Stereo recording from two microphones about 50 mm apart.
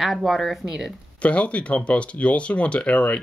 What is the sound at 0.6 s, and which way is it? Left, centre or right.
Speech, centre.